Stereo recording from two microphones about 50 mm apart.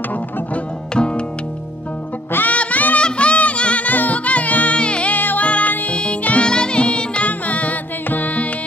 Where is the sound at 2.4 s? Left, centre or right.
Left.